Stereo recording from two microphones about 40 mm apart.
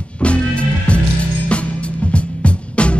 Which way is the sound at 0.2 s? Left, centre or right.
Left.